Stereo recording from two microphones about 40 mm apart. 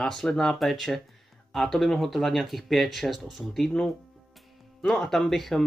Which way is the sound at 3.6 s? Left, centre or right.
Left.